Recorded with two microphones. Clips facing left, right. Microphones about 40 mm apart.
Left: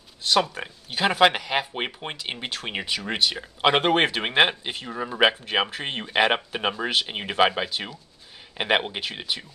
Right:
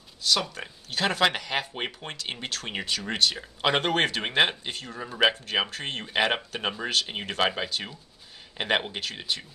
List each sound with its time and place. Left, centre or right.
0.2 s speech: left
0.6 s speech: centre